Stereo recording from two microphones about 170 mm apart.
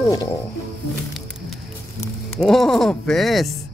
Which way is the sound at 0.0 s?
20° left (ahead or behind).